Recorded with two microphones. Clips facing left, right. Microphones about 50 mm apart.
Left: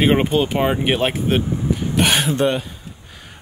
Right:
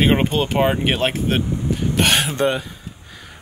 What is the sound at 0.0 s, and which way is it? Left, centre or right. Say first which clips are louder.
Speech: left 1 dB; centre.